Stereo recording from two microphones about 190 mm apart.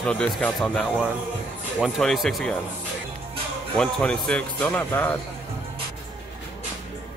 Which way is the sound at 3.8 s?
5° left (ahead or behind).